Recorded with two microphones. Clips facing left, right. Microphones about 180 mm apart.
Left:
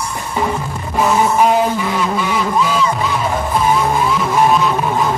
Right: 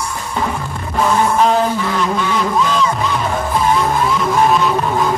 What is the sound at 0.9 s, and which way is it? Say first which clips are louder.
Music: left 1 dB; 5° left (ahead or behind).